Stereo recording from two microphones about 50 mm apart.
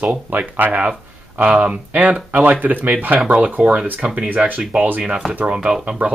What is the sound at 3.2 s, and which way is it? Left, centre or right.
Speech, right.